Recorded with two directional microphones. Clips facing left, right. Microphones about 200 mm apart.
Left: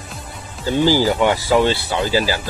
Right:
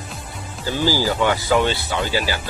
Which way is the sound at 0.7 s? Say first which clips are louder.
Left 5 dB; 25° left (ahead or behind).